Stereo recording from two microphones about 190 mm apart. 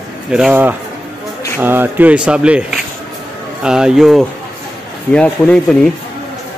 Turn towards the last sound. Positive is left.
turn(degrees=5)  # may be behind; listen again after turning